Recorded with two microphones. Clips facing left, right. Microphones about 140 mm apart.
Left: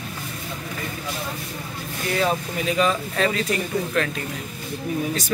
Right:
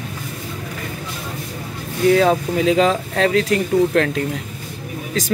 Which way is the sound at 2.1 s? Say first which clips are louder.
Right 7 dB; 90° right.